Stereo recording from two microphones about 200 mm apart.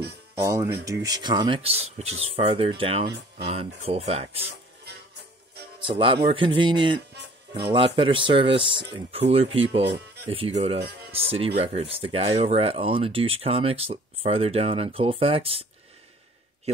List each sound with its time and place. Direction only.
0.4 s speech: 15° right (ahead or behind); by 4.5 s 30° right (ahead or behind)
5.9 s speech: 25° right (ahead or behind)